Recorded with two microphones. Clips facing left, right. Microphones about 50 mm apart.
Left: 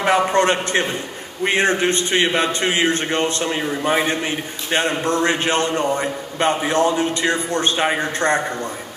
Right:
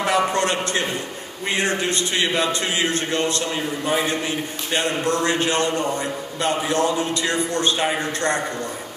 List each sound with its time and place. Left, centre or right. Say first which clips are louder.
0.0 s a man's voice: left 4 dB; left